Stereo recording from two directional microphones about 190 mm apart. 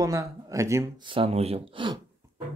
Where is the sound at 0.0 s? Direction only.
15° right (ahead or behind).